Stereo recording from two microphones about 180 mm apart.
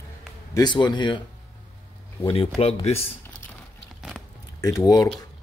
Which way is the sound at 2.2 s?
30° left (ahead or behind).